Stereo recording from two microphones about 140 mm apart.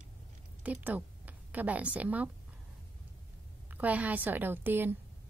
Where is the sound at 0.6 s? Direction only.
10° right (ahead or behind).